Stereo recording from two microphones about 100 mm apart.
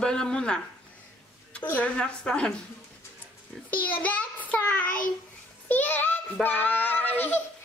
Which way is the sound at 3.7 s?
15° left (ahead or behind).